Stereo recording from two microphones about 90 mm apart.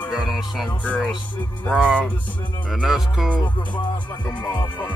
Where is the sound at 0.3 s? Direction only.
Centre (ahead or behind).